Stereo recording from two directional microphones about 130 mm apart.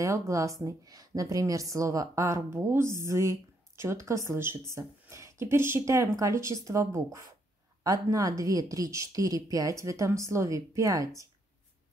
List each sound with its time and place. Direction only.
0.3 s a woman's voice: 25° right (ahead or behind)